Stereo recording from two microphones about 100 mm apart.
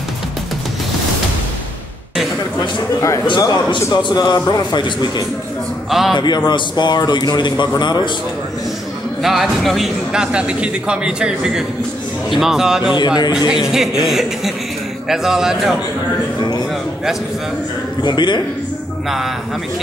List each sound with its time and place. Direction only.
3.3 s a man's voice: 45° left (ahead or behind)
5.9 s a man's voice: 5° right (ahead or behind)
6.1 s a man's voice: 45° left (ahead or behind)
9.2 s speech: centre (ahead or behind)
12.9 s a man's voice: 45° left (ahead or behind)
13.5 s speech: 5° right (ahead or behind)
18.0 s a man's voice: 50° left (ahead or behind)
19.0 s speech: centre (ahead or behind)